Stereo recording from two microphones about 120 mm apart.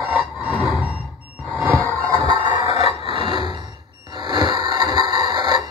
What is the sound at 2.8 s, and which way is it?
Alarm clock, 45° right (ahead or behind).